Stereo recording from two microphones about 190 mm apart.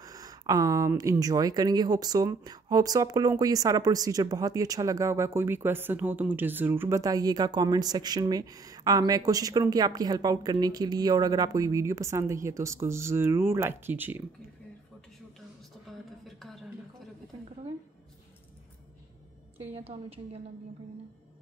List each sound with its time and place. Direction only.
0.0 s speech: 20° right (ahead or behind)
15.9 s a sound: centre (ahead or behind)
19.7 s a woman's voice: 30° right (ahead or behind)